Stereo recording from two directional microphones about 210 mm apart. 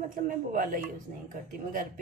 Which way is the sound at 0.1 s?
40° right (ahead or behind).